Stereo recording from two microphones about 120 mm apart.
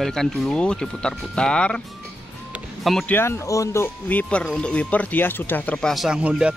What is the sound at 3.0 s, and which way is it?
Speech, 20° left (ahead or behind).